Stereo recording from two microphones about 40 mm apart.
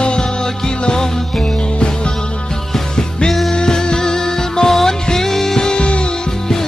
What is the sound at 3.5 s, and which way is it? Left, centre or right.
Music, centre.